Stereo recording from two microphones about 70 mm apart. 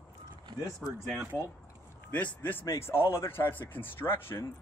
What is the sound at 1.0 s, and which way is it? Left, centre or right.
Speech, centre.